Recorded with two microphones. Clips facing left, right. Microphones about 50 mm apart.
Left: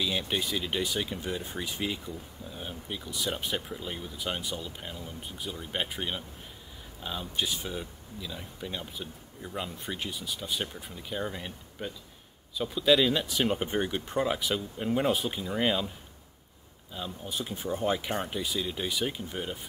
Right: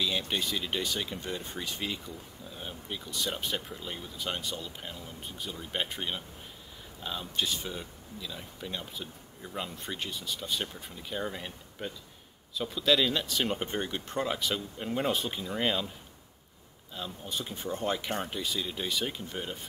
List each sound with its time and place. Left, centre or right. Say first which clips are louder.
0.0 s speech: left 1 dB; centre
16.9 s speech: left 1 dB; centre